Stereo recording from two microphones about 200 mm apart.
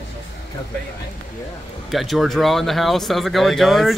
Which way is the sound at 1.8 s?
Centre (ahead or behind).